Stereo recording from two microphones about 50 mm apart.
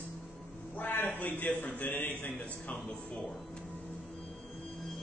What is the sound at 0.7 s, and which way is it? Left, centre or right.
A man's voice, left.